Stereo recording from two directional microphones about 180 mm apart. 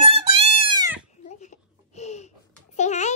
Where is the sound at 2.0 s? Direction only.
35° left (ahead or behind).